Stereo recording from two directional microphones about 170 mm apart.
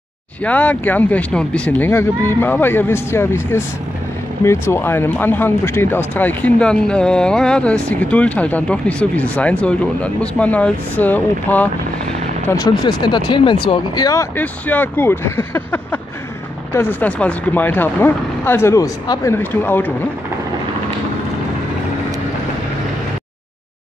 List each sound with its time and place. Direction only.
0.4 s speech: 10° left (ahead or behind)
12.4 s speech: 20° left (ahead or behind)
14.3 s speech: 10° left (ahead or behind)